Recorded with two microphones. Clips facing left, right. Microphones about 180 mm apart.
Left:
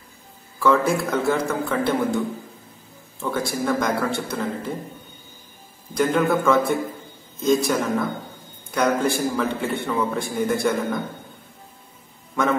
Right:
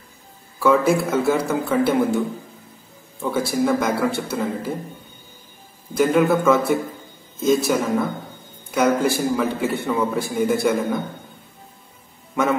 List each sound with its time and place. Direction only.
0.6 s a man's voice: 5° right (ahead or behind)
5.9 s speech: 5° right (ahead or behind)